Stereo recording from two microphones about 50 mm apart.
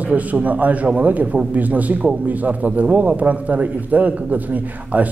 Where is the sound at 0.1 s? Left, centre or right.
Right.